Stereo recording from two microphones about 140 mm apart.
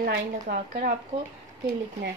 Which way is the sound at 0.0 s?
85° right.